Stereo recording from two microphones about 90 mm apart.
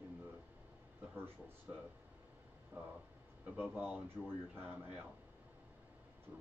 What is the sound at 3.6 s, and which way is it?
Speech, 20° right (ahead or behind).